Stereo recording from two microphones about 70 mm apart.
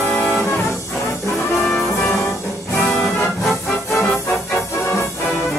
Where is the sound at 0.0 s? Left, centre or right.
Left.